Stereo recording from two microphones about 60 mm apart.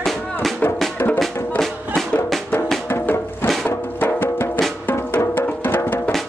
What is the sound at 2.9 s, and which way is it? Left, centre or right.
Music, left.